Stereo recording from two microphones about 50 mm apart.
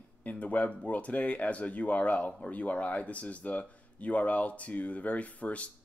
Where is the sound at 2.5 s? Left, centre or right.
Left.